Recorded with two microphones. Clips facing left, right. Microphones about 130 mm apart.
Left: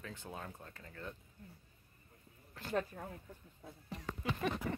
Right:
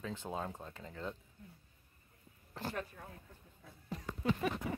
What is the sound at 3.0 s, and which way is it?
Speech, 35° left (ahead or behind).